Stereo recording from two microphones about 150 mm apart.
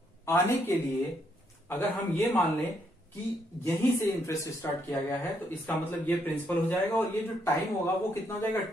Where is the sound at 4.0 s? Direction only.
20° left (ahead or behind).